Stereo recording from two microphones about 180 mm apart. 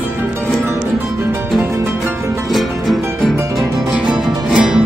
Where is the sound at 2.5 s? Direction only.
Centre (ahead or behind).